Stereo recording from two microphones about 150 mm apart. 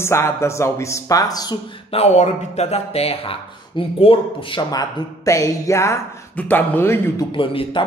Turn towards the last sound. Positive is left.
turn(degrees=35)  # may be behind; listen again after turning